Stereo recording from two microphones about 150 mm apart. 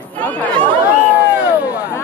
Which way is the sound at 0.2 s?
10° left (ahead or behind).